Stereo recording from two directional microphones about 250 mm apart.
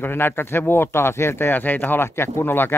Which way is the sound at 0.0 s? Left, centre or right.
Centre.